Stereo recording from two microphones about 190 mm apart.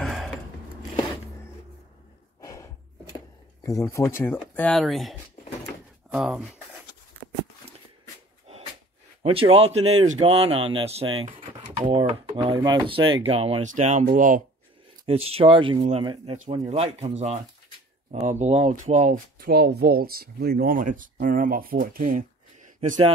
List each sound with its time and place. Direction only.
0.0 s a sound: centre (ahead or behind)
2.4 s gasp: 15° left (ahead or behind)
3.6 s speech: 15° left (ahead or behind); by 5.1 s centre (ahead or behind)
6.1 s speech: 5° right (ahead or behind)
9.2 s a man's voice: 30° right (ahead or behind)
12.5 s speech: 20° right (ahead or behind); by 14.4 s 45° right (ahead or behind)
15.0 s speech: 30° right (ahead or behind)
18.1 s speech: 35° right (ahead or behind)